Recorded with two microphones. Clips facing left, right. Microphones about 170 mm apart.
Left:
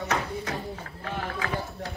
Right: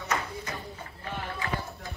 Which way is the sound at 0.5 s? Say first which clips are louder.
Left 5 dB; 80° left.